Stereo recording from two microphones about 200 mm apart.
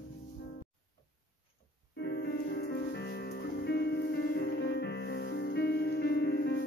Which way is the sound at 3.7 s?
50° left (ahead or behind).